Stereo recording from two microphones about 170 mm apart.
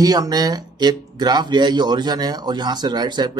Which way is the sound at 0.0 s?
20° right (ahead or behind).